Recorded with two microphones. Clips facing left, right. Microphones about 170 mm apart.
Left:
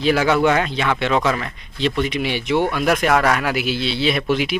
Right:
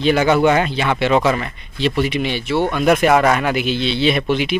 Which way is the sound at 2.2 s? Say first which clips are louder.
Even; 15° left (ahead or behind).